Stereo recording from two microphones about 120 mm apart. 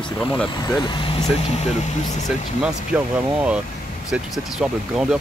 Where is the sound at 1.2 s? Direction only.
65° left (ahead or behind).